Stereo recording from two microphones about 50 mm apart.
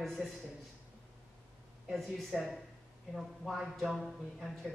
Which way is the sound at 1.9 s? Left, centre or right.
Centre.